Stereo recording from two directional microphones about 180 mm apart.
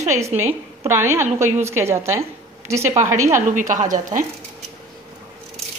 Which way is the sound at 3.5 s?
45° right (ahead or behind).